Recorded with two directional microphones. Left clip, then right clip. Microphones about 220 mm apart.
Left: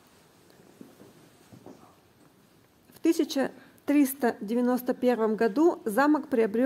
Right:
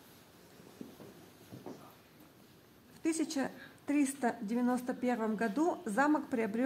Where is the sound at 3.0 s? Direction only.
30° left (ahead or behind).